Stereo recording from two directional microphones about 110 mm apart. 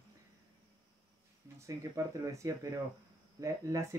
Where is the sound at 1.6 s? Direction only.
30° right (ahead or behind).